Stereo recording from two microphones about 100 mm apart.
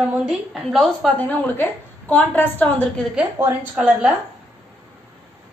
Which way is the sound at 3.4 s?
20° right (ahead or behind).